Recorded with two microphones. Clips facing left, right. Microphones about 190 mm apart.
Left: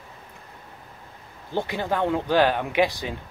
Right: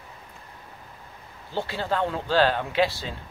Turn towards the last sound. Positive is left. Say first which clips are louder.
# left 2 dB
turn(degrees=15)  # may be behind; listen again after turning